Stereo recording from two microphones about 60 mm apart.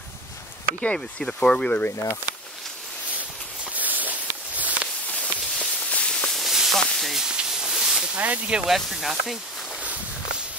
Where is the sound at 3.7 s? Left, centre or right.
Right.